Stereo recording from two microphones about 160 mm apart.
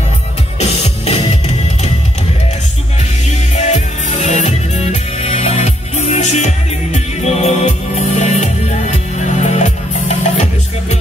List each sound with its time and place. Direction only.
0.6 s music: 40° left (ahead or behind)
3.5 s music: 45° left (ahead or behind)